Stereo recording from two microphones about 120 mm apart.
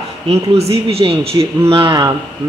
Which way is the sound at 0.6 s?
55° right (ahead or behind).